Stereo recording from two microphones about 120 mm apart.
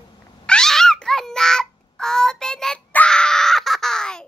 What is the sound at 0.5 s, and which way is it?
Cat, 5° left (ahead or behind).